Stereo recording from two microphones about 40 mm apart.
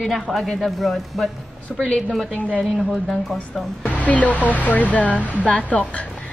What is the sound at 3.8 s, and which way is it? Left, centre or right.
Speech, left.